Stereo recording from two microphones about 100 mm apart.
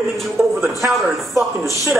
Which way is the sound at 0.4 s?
25° right (ahead or behind).